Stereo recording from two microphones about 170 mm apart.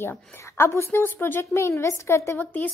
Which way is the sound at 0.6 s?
15° left (ahead or behind).